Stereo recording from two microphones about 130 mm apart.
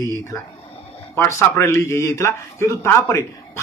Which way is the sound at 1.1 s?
20° left (ahead or behind).